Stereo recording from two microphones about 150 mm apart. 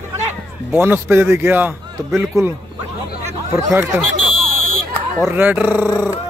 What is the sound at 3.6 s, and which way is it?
Speech, 15° right (ahead or behind).